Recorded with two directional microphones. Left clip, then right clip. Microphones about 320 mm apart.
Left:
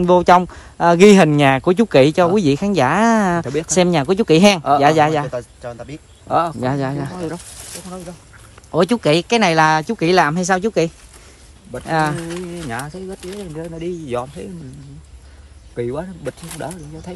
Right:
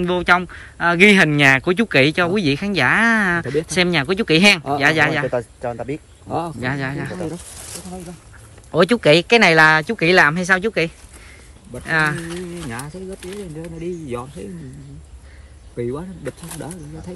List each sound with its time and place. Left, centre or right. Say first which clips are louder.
0.0 s a man's voice: left 5 dB; centre
6.2 s speech: left 8 dB; centre
6.6 s a man's voice: left 3 dB; centre
8.7 s a man's voice: right 2 dB; centre
12.6 s speech: left 4 dB; left
15.8 s speech: left 2 dB; centre